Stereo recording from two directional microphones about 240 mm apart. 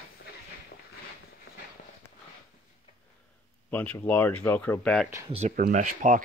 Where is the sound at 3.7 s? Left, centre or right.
Centre.